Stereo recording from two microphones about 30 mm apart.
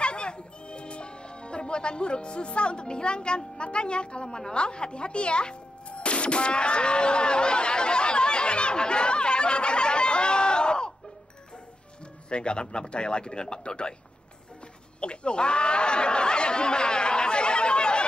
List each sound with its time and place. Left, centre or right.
0.0 s music: left
4.6 s speech: left
12.3 s a man's voice: left
15.0 s chatter: left